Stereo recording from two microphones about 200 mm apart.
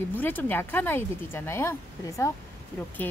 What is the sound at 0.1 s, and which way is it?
Speech, 10° left (ahead or behind).